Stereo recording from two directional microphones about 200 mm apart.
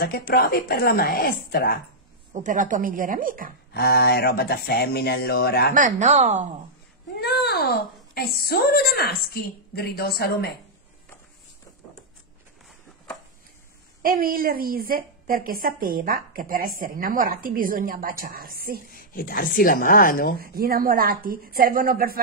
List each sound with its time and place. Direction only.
0.0 s a child's voice: 50° left (ahead or behind)
2.4 s a woman's voice: 40° right (ahead or behind)
3.7 s a child's voice: 50° left (ahead or behind)
5.8 s speech: 40° right (ahead or behind)
7.2 s a child's voice: 55° left (ahead or behind)
14.0 s a woman's voice: 45° right (ahead or behind)
18.9 s a child's voice: 45° left (ahead or behind)
20.3 s a woman's voice: 50° right (ahead or behind)